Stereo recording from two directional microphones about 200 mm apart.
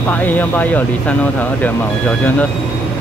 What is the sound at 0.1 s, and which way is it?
Speech, 10° left (ahead or behind).